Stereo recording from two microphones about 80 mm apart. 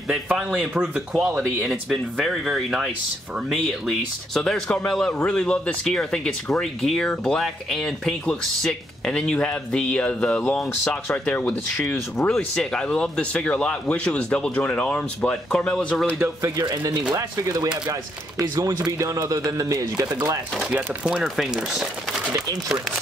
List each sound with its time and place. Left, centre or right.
0.3 s speech: centre
16.2 s speech: right
20.7 s speech: centre